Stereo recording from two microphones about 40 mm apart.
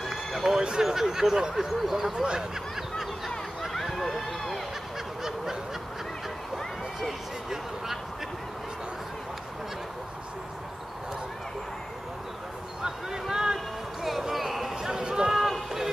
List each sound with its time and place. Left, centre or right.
0.0 s run: centre
0.6 s speech: centre
0.9 s speech: centre
3.7 s run: centre
5.2 s fowl: centre
6.5 s a sound: centre
12.8 s a sound: centre
14.3 s a sound: centre
14.9 s run: centre
15.3 s run: centre